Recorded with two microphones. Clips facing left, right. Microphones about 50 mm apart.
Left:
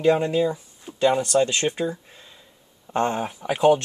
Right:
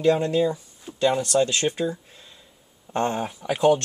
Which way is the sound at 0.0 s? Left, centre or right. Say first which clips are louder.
Left 1 dB; left.